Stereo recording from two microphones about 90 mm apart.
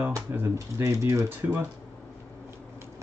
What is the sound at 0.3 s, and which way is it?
Speech, 30° right (ahead or behind).